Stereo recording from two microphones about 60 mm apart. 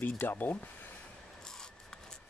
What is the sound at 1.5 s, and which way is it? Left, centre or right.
Rub, centre.